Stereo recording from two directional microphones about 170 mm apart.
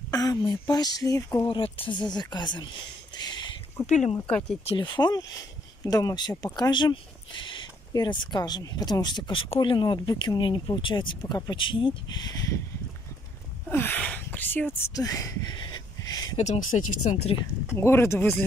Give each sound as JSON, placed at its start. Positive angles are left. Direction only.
{"t": 0.1, "sound": "speech", "side_deg": 20}
{"t": 3.2, "sound": "a sound", "side_deg": 25}
{"t": 3.8, "sound": "speech", "side_deg": 45}
{"t": 4.3, "sound": "speech", "side_deg": 5}
{"t": 4.6, "sound": "speech", "side_deg": 25}
{"t": 13.7, "sound": "a sound", "side_deg": 10}
{"t": 16.3, "sound": "speech", "side_deg": 45}
{"t": 17.7, "sound": "speech", "side_deg": 15}